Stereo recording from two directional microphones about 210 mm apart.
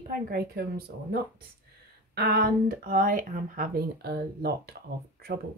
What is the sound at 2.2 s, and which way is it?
Speech, 50° right (ahead or behind).